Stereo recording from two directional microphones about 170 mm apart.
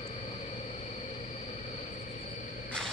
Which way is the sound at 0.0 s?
40° left (ahead or behind).